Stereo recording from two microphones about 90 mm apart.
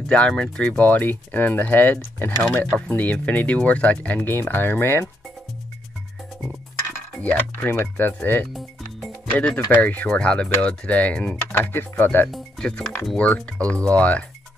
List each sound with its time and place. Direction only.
0.1 s speech: 15° left (ahead or behind)
7.2 s speech: 20° left (ahead or behind)
8.5 s music: centre (ahead or behind)
9.5 s speech: 20° left (ahead or behind)
12.3 s speech: 10° left (ahead or behind)